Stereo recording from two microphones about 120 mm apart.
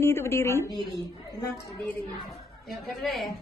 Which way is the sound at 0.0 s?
20° left (ahead or behind).